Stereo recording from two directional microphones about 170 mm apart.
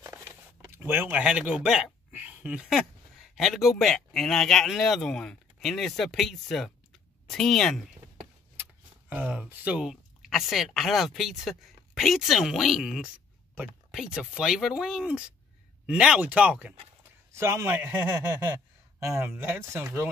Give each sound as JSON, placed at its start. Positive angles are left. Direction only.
{"t": 0.0, "sound": "speech", "side_deg": -15}
{"t": 9.1, "sound": "a man's voice", "side_deg": -5}